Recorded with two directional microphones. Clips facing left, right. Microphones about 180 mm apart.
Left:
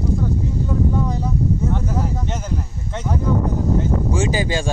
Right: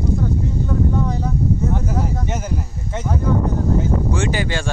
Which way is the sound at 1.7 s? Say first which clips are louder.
Right 1 dB; 5° right (ahead or behind).